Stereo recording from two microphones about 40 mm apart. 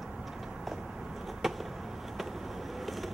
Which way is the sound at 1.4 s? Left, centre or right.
Centre.